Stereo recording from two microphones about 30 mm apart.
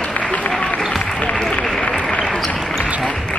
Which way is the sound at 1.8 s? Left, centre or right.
Left.